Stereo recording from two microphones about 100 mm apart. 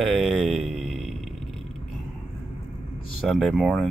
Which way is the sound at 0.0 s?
Centre (ahead or behind).